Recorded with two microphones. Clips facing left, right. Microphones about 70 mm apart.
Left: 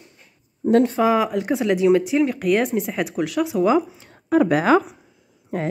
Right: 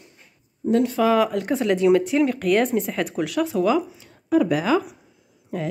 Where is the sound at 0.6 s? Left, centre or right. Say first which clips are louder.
Left 4 dB; left.